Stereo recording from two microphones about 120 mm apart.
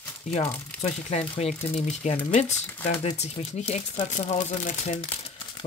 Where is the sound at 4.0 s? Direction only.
75° left (ahead or behind).